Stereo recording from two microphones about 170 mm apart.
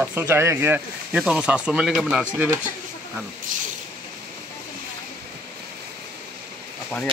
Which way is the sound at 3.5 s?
50° right (ahead or behind).